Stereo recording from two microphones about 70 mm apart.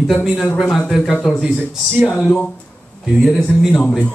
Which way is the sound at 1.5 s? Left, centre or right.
Centre.